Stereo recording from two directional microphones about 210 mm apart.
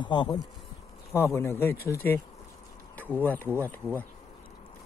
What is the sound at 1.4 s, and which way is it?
Speech, 10° left (ahead or behind).